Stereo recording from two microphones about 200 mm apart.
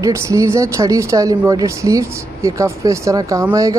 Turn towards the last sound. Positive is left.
turn(degrees=-15)  # may be behind; listen again after turning